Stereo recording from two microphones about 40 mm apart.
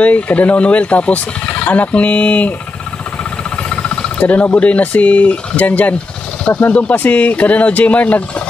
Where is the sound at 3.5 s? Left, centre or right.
Left.